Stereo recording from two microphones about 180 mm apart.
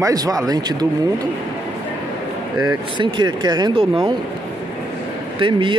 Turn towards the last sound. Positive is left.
turn(degrees=-25)  # may be behind; listen again after turning